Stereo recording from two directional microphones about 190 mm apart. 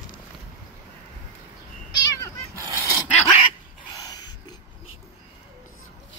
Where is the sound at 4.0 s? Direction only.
20° left (ahead or behind).